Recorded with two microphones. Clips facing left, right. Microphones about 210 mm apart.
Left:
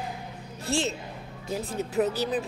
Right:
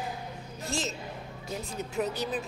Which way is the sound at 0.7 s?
30° left (ahead or behind).